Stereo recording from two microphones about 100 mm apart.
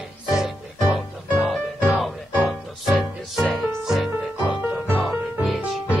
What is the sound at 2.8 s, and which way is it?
Music, 5° right (ahead or behind).